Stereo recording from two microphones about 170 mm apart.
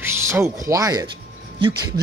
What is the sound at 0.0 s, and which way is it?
Music, 15° right (ahead or behind).